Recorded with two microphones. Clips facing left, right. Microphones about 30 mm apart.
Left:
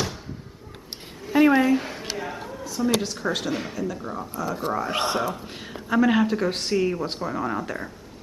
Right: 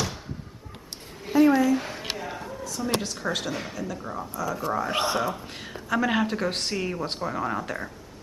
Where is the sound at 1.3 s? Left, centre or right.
Left.